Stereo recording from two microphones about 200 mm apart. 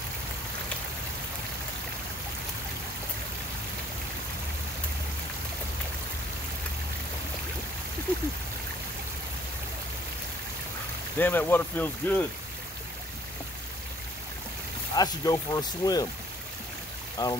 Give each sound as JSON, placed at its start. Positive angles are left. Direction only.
{"t": 11.1, "sound": "speech", "side_deg": 10}
{"t": 15.0, "sound": "speech", "side_deg": 20}
{"t": 17.2, "sound": "speech", "side_deg": 20}